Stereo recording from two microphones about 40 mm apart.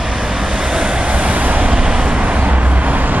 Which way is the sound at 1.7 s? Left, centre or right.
Right.